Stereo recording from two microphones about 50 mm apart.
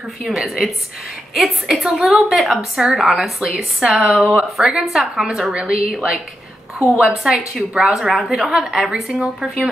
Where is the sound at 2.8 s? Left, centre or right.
Centre.